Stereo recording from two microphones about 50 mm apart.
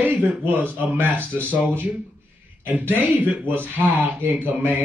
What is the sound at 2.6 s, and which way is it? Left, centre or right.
Speech, right.